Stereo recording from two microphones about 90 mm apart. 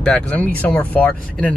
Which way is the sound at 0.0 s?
15° left (ahead or behind).